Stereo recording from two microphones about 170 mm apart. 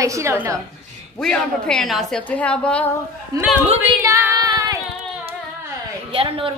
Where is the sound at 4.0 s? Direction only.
15° right (ahead or behind).